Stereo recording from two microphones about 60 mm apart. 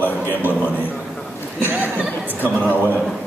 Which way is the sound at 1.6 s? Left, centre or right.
Right.